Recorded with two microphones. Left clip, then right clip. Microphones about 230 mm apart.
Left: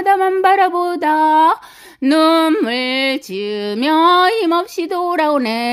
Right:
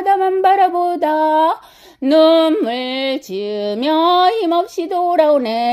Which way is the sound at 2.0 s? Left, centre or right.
Centre.